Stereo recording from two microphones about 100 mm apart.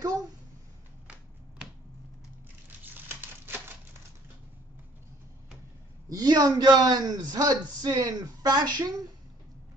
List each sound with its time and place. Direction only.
2.8 s crumpling: 20° right (ahead or behind)
6.0 s a man's voice: 40° right (ahead or behind)